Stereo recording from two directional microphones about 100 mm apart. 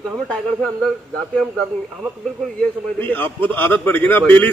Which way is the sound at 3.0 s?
20° left (ahead or behind).